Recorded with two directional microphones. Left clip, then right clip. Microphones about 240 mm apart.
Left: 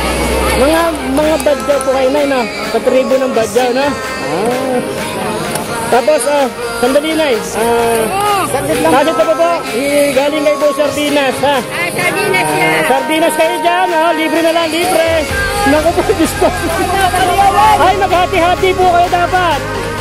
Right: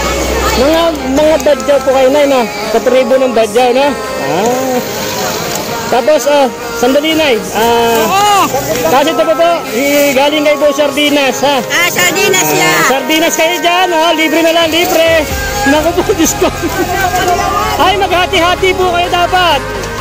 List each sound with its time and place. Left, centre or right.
3.5 s speech: centre
6.9 s speech: centre
11.1 s speech: centre
11.8 s speech: right
12.9 s speech: centre
17.8 s speech: centre